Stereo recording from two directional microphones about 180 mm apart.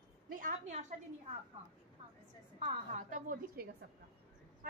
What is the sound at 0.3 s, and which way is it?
Speech, 45° right (ahead or behind).